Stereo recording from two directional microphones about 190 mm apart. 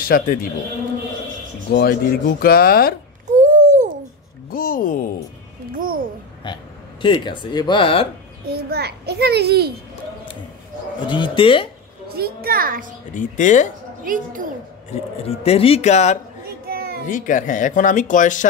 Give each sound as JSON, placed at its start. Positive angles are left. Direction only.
{"t": 0.0, "sound": "speech", "side_deg": 50}
{"t": 1.7, "sound": "speech", "side_deg": 55}
{"t": 3.3, "sound": "a sound", "side_deg": -40}
{"t": 4.5, "sound": "speech", "side_deg": 50}
{"t": 5.8, "sound": "a sound", "side_deg": -50}
{"t": 6.4, "sound": "speech", "side_deg": 25}
{"t": 8.5, "sound": "a child's voice", "side_deg": -55}
{"t": 11.1, "sound": "speech", "side_deg": 25}
{"t": 12.1, "sound": "a child's voice", "side_deg": -55}
{"t": 13.1, "sound": "speech", "side_deg": 40}
{"t": 14.0, "sound": "a child's voice", "side_deg": -45}
{"t": 14.9, "sound": "speech", "side_deg": 30}
{"t": 16.6, "sound": "a sound", "side_deg": -55}
{"t": 17.1, "sound": "speech", "side_deg": 45}